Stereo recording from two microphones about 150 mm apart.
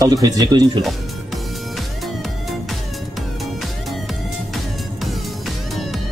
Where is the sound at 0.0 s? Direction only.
25° right (ahead or behind).